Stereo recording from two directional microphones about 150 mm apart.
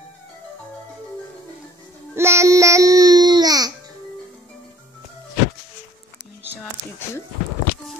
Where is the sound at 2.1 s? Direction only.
15° right (ahead or behind).